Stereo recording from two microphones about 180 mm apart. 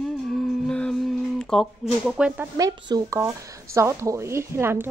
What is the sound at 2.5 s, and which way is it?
A woman's voice, 20° right (ahead or behind).